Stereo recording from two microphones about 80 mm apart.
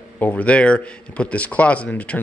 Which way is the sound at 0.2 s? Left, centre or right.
Centre.